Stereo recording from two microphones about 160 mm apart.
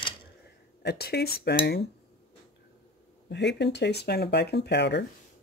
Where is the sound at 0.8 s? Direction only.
85° left.